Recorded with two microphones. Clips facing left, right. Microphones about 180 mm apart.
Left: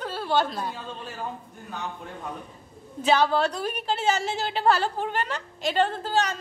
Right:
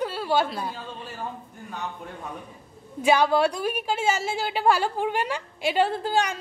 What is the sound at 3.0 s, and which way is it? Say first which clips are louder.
A woman's voice: right 2 dB; 10° right (ahead or behind).